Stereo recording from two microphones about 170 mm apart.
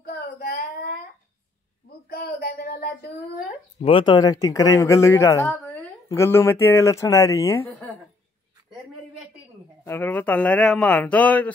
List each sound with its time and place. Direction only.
0.0 s child singing: 60° left (ahead or behind)
1.9 s a sound: 65° left (ahead or behind)
3.8 s speech: 30° left (ahead or behind)
9.8 s speech: 10° left (ahead or behind)